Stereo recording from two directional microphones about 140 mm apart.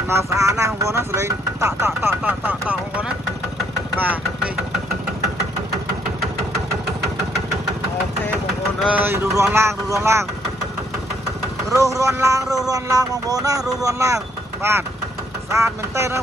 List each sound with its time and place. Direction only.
0.1 s speech: 20° right (ahead or behind)
2.0 s a sound: 15° right (ahead or behind)
3.9 s speech: 10° right (ahead or behind)
8.9 s speech: 15° right (ahead or behind)
11.7 s speech: 25° right (ahead or behind)